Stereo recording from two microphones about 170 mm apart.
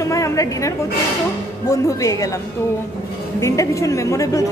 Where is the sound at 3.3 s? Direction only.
20° left (ahead or behind).